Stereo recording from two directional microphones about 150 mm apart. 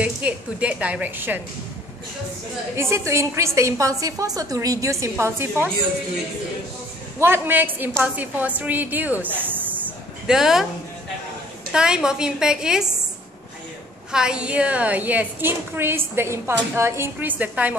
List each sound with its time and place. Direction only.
0.0 s a woman's voice: 10° right (ahead or behind)
2.7 s a woman's voice: 15° right (ahead or behind)
7.2 s a woman's voice: 15° right (ahead or behind)
11.7 s a woman's voice: 5° right (ahead or behind)
14.1 s a woman's voice: 5° right (ahead or behind)